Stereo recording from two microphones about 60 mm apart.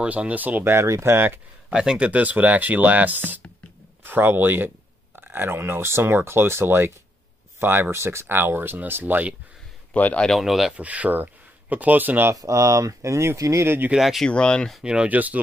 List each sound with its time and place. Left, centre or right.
0.0 s speech: right
0.7 s speech: right
1.1 s speech: right
1.7 s speech: centre
2.0 s speech: right
9.9 s a man's voice: left
10.2 s speech: centre
10.8 s speech: right
12.4 s speech: right
13.9 s speech: centre
14.2 s speech: centre
14.8 s speech: centre
15.0 s speech: right